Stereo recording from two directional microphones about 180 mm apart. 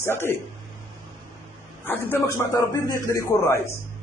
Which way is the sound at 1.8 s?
10° left (ahead or behind).